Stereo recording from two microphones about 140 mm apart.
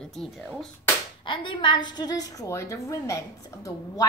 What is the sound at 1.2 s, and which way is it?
A woman's voice, 35° left (ahead or behind).